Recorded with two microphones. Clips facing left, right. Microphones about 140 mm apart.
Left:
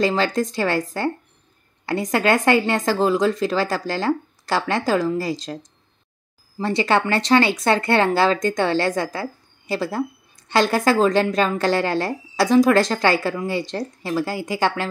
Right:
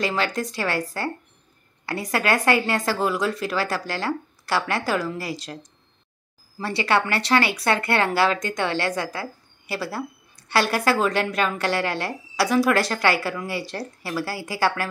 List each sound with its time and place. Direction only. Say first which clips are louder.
0.0 s speech: left 5 dB; 30° left (ahead or behind)
6.6 s speech: left 3 dB; 25° left (ahead or behind)